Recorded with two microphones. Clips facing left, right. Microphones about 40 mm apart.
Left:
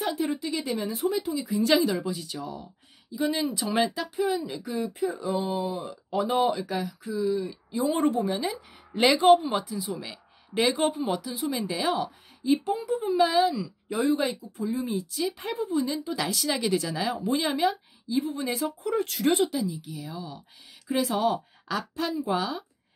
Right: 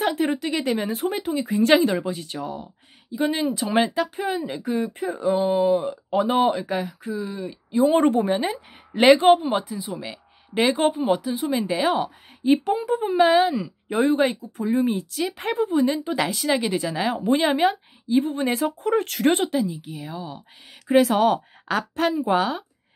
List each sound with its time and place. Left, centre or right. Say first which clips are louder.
0.0 s speech: right 5 dB; right
7.9 s speech: right 3 dB; right
8.9 s speech: right 4 dB; right
12.6 s speech: right 4 dB; right
16.3 s speech: right 4 dB; right
20.9 s speech: right 8 dB; right